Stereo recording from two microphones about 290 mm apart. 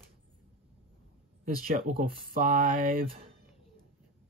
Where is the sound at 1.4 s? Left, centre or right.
Right.